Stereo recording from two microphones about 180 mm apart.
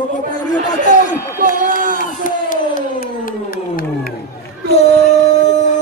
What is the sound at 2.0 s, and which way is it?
Crowd, 50° left (ahead or behind).